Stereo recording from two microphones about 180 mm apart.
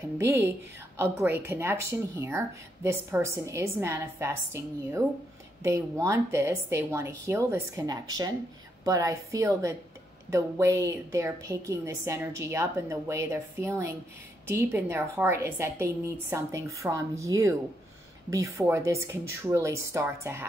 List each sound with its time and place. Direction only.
0.2 s a woman's voice: 15° right (ahead or behind)